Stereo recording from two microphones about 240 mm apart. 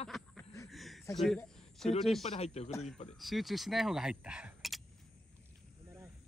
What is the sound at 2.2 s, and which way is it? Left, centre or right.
Speech, left.